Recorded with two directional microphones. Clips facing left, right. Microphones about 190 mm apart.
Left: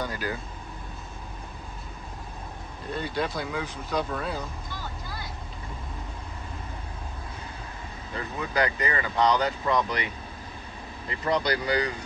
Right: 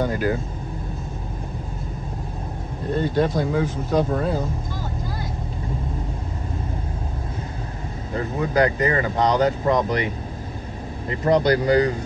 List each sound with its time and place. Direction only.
0.0 s speech: 25° right (ahead or behind)
3.3 s speech: 35° right (ahead or behind)
8.1 s speech: 40° right (ahead or behind)